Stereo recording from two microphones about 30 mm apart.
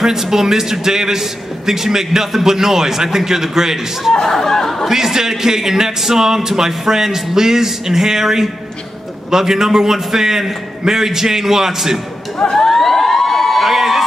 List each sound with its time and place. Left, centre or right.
0.0 s a man's voice: centre
4.2 s speech: centre
4.8 s a man's voice: centre
12.4 s speech: centre
12.7 s a sound: centre
13.6 s a sound: centre